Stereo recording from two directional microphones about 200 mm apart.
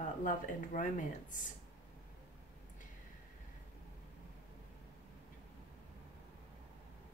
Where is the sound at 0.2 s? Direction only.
40° left (ahead or behind).